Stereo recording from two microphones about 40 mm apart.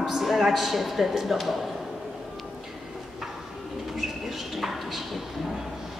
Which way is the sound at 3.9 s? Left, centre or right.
Centre.